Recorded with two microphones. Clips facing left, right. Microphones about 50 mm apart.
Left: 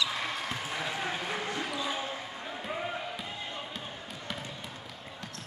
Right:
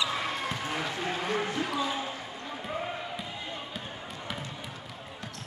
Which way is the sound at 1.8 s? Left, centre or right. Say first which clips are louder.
Right 1 dB; centre.